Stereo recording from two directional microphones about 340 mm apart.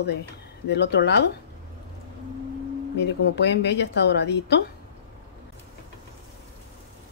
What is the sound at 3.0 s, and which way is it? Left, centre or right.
Speech, left.